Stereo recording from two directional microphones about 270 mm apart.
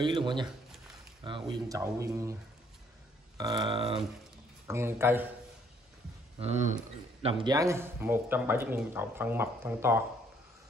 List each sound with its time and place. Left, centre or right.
0.0 s speech: centre
3.3 s speech: centre
4.6 s speech: centre
7.2 s speech: centre